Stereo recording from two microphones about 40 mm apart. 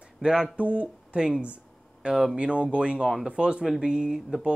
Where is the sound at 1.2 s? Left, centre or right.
Right.